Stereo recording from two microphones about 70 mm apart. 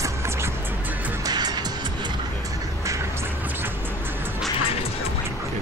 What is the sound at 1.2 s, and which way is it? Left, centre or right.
Music, right.